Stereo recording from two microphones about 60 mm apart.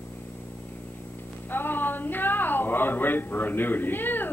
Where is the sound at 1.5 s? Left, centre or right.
Left.